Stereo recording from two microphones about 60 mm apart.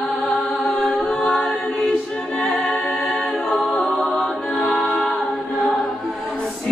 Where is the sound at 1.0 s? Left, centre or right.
Centre.